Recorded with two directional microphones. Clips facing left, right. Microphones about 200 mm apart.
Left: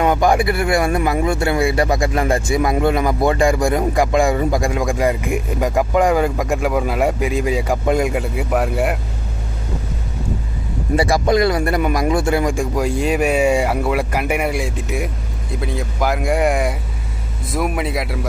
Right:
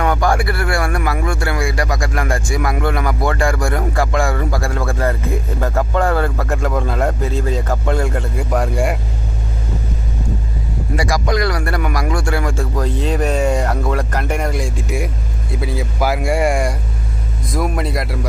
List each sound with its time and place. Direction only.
0.0 s speech: 20° left (ahead or behind)
11.0 s speech: 25° left (ahead or behind); by 18.2 s centre (ahead or behind)